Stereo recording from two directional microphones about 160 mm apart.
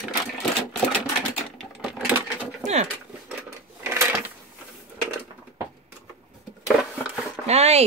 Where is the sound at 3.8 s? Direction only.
15° right (ahead or behind).